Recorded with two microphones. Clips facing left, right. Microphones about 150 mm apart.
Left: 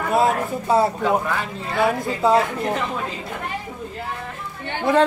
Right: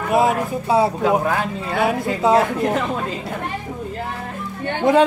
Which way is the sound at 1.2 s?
50° right (ahead or behind).